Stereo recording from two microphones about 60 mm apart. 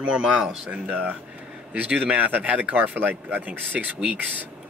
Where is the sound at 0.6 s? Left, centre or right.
Right.